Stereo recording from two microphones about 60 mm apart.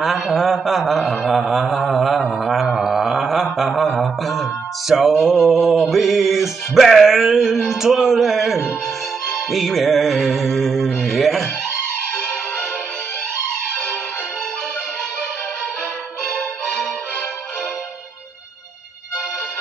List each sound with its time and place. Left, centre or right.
0.0 s a man's voice: centre
1.4 s mantra: centre
3.5 s music: centre
12.1 s music: left
16.3 s music: centre